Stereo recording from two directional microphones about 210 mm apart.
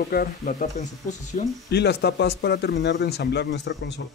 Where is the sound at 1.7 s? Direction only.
50° left (ahead or behind).